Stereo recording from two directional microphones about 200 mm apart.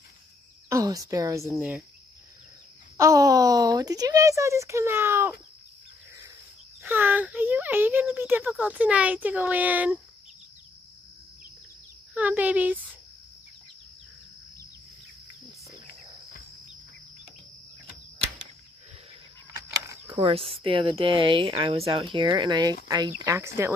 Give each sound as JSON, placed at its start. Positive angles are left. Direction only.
{"t": 0.7, "sound": "speech", "side_deg": -15}
{"t": 3.0, "sound": "speech", "side_deg": -15}
{"t": 6.8, "sound": "speech", "side_deg": -10}
{"t": 12.1, "sound": "speech", "side_deg": -5}
{"t": 20.1, "sound": "speech", "side_deg": -30}